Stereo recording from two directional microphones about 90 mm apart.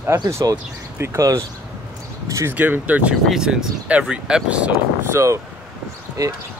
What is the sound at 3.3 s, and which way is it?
Speech, 5° right (ahead or behind).